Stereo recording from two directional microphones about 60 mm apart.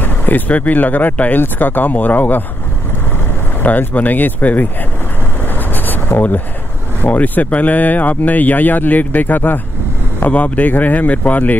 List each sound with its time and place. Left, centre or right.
0.0 s speech: left
3.6 s speech: left
5.5 s a sound: left
7.0 s speech: left